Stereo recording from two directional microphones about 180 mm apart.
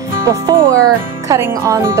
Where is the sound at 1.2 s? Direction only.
15° right (ahead or behind).